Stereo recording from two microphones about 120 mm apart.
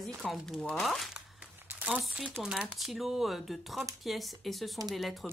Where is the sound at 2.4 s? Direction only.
5° right (ahead or behind).